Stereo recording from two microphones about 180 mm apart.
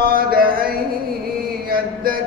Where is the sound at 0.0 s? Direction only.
55° right (ahead or behind).